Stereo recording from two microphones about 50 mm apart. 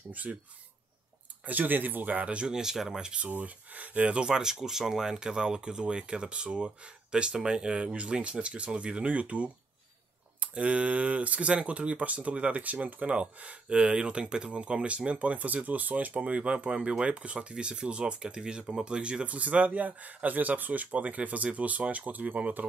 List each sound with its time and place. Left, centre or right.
0.1 s speech: right
1.4 s speech: right
2.5 s speech: centre
3.3 s speech: right